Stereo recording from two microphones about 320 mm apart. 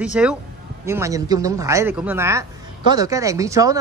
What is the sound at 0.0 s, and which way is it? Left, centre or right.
Speech, centre.